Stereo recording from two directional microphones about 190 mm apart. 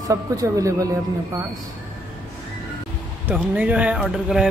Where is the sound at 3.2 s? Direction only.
10° right (ahead or behind).